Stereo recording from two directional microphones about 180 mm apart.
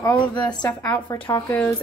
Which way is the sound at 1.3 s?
15° left (ahead or behind).